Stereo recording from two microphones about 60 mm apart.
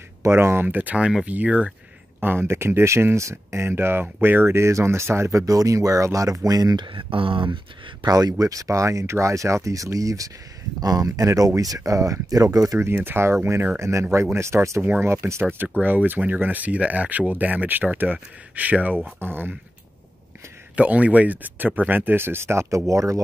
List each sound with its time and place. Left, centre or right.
0.3 s speech: right
2.1 s a sound: right
2.4 s speech: right
5.4 s speech: right
8.1 s speech: right
9.9 s speech: right
10.8 s speech: right
12.7 s speech: right
13.7 s speech: right
14.8 s speech: right
15.0 s speech: right
15.8 s speech: right
20.7 s speech: right